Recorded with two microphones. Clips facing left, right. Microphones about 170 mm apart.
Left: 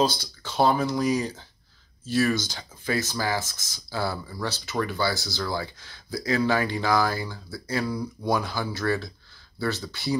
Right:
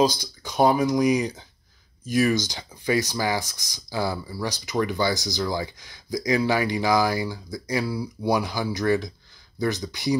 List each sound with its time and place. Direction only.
0.0 s speech: 15° right (ahead or behind)